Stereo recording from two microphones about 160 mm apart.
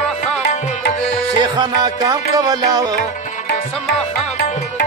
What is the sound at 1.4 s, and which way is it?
Music, 25° right (ahead or behind).